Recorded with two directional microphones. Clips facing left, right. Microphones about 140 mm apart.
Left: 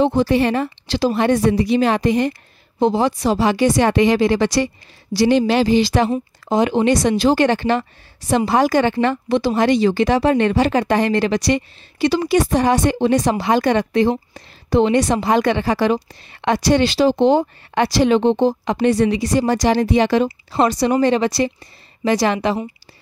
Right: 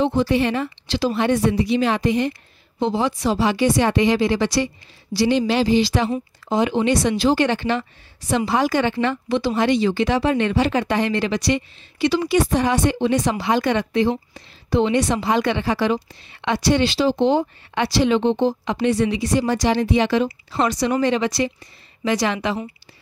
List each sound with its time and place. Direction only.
0.0 s a woman's voice: 45° left (ahead or behind)